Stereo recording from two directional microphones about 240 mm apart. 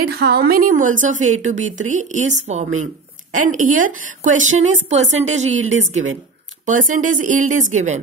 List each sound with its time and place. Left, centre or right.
0.1 s a woman's voice: right
5.6 s a woman's voice: right
6.6 s a woman's voice: right